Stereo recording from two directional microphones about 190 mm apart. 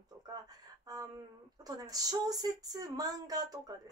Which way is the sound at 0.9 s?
20° right (ahead or behind).